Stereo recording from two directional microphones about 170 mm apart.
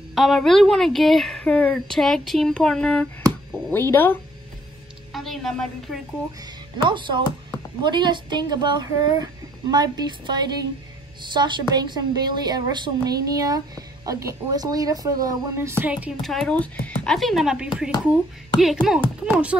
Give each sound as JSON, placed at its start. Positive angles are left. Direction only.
{"t": 0.1, "sound": "a woman's voice", "side_deg": 0}
{"t": 5.1, "sound": "a sound", "side_deg": 0}
{"t": 6.4, "sound": "a woman's voice", "side_deg": -30}
{"t": 16.2, "sound": "a woman's voice", "side_deg": 0}